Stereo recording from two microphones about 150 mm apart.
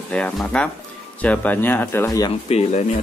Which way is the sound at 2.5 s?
50° left (ahead or behind).